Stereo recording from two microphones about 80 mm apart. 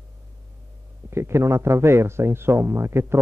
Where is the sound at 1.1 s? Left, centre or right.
Right.